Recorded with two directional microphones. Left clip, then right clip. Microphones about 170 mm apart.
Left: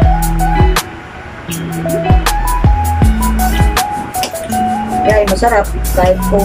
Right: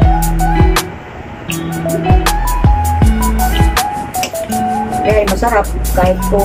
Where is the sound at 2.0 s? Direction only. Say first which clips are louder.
Right 2 dB; centre (ahead or behind).